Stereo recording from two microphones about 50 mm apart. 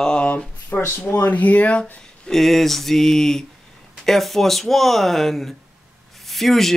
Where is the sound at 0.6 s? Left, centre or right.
Left.